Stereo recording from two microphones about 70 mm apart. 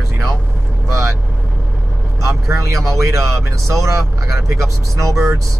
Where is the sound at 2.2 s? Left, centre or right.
Right.